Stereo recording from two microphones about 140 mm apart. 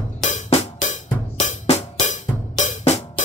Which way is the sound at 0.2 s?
60° left (ahead or behind).